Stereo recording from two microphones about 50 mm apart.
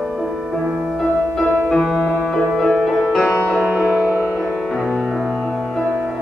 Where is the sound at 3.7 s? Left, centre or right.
Right.